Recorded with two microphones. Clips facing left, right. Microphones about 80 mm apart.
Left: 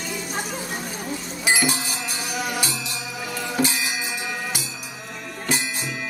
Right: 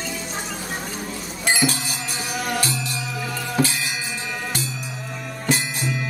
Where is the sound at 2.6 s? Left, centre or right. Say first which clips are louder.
Right 3 dB; centre.